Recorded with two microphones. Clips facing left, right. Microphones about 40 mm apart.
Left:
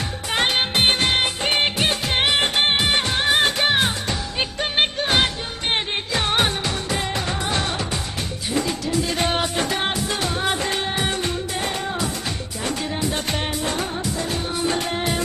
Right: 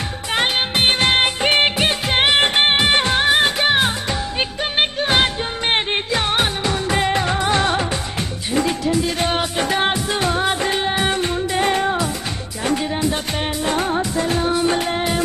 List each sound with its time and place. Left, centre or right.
0.3 s music: centre
0.9 s music of bollywood: right
3.3 s music: centre
6.9 s music: right
9.0 s music: centre
9.7 s music: right
12.6 s music: right
13.8 s music: right
14.8 s music: centre